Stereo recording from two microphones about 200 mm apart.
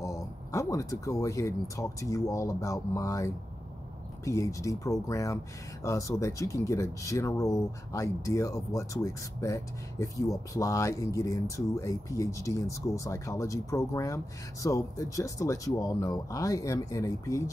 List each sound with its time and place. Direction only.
0.0 s speech: 15° left (ahead or behind)